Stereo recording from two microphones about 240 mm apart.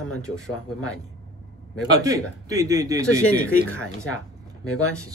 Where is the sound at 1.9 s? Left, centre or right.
Centre.